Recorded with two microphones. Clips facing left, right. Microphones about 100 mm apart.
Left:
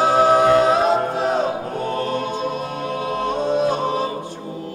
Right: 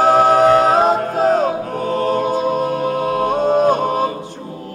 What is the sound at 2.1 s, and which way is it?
Music, 45° right (ahead or behind).